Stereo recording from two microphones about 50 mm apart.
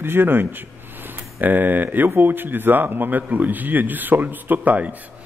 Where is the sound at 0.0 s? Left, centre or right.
Right.